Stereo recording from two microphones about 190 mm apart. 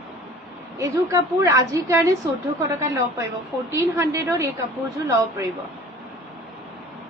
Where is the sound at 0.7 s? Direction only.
15° right (ahead or behind).